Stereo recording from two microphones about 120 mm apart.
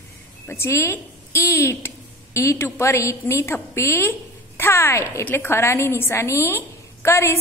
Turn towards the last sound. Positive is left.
turn(degrees=20)  # may be behind; listen again after turning